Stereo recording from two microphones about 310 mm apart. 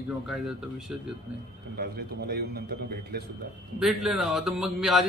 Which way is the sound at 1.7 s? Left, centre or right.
Right.